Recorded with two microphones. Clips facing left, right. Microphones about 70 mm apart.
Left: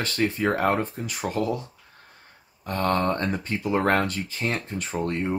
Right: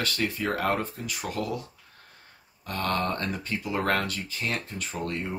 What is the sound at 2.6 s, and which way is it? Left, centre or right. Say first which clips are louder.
Speech: left 4 dB; left.